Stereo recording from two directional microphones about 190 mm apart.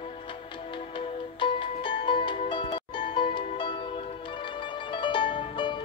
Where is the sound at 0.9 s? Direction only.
25° left (ahead or behind).